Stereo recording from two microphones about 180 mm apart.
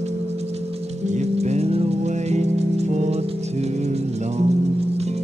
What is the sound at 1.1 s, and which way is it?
Music, 40° right (ahead or behind).